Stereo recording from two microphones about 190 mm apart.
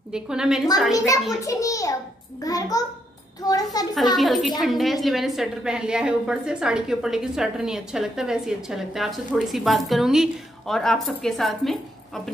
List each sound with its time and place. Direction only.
0.1 s speech: 5° right (ahead or behind)
0.9 s a child's voice: 15° left (ahead or behind)
4.2 s speech: centre (ahead or behind)